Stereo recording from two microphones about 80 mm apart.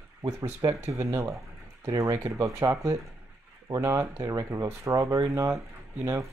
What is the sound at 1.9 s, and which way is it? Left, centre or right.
Speech, right.